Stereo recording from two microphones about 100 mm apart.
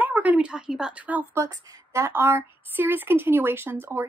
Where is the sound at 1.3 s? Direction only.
30° right (ahead or behind).